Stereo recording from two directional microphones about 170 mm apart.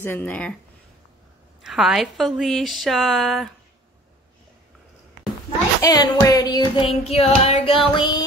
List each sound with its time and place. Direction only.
0.0 s speech: 10° left (ahead or behind)
1.6 s a woman's voice: centre (ahead or behind)
5.8 s child singing: 20° left (ahead or behind)
6.9 s child singing: 35° left (ahead or behind)